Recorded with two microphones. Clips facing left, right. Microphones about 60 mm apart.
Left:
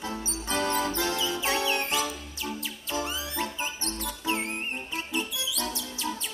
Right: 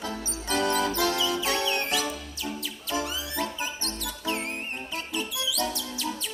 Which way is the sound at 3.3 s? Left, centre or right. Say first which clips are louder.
Right 1 dB; left.